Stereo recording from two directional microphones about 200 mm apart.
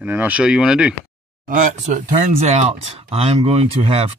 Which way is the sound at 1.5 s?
40° right (ahead or behind).